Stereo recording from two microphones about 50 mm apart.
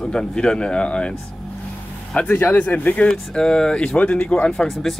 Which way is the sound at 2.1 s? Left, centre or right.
Left.